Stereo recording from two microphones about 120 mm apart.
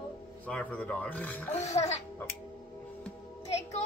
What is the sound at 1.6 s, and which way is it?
Speech, 65° left (ahead or behind).